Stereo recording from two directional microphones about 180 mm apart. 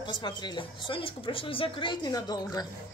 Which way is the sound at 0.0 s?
25° left (ahead or behind).